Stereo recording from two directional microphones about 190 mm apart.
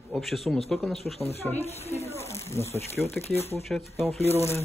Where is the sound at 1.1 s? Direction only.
35° left (ahead or behind).